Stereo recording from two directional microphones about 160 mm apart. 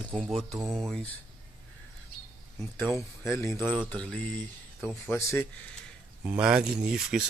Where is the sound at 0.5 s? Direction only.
20° right (ahead or behind).